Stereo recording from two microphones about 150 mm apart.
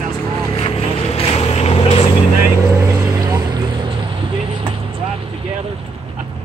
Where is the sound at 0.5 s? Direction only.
40° left (ahead or behind).